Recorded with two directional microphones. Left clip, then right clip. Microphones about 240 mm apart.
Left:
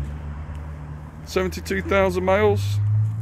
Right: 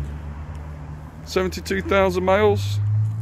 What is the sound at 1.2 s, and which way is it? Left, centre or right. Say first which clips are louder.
Speech: right 1 dB; centre.